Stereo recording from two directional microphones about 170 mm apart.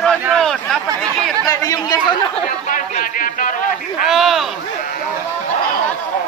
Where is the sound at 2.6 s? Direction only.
50° left (ahead or behind).